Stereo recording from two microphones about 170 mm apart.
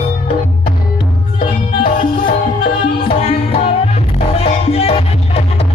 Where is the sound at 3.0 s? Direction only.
35° left (ahead or behind).